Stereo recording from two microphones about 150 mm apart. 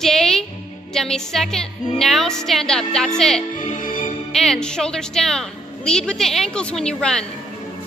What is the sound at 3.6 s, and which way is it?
Music, 60° left (ahead or behind).